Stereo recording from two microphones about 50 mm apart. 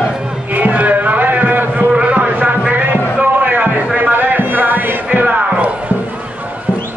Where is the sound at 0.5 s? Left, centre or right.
Right.